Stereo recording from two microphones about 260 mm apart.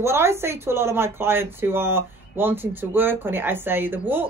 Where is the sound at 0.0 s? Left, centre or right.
Centre.